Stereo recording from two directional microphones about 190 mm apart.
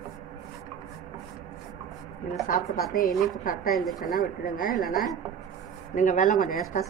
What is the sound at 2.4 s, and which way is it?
Speech, 45° left (ahead or behind).